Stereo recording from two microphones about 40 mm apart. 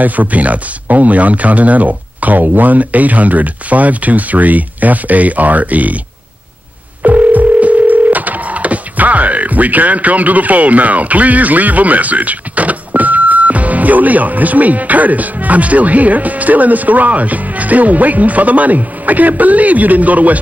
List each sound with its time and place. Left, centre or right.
0.0 s speech: right
7.0 s dial tone: right